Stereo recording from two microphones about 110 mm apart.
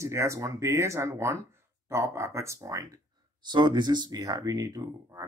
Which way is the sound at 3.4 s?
45° right (ahead or behind).